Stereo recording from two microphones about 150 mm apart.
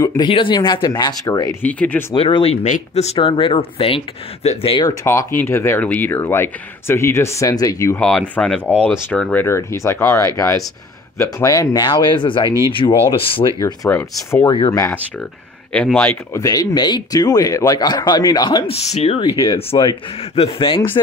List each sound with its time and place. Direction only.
0.3 s speech: 35° left (ahead or behind)
1.6 s speech: 10° left (ahead or behind)
2.1 s speech: 35° left (ahead or behind)
2.6 s speech: 50° left (ahead or behind)
4.8 s speech: 15° left (ahead or behind)
8.0 s speech: 5° left (ahead or behind); by 12.4 s 35° left (ahead or behind)
12.4 s speech: 20° right (ahead or behind)
13.1 s speech: 35° left (ahead or behind)
13.8 s speech: 20° left (ahead or behind)
15.7 s speech: 5° left (ahead or behind)
16.3 s speech: 25° left (ahead or behind)
18.9 s speech: 45° left (ahead or behind)